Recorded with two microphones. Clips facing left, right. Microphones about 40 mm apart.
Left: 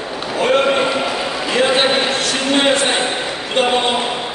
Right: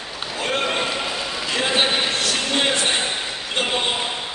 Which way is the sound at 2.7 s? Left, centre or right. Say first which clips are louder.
Left 5 dB; centre.